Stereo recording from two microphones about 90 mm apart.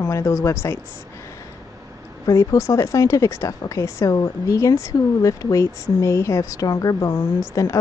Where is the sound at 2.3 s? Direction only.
35° left (ahead or behind).